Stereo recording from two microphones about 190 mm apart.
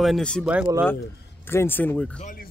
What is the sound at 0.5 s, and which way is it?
Speech, 10° right (ahead or behind).